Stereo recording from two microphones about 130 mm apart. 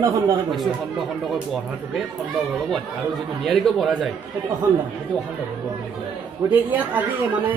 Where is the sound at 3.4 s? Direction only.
Centre (ahead or behind).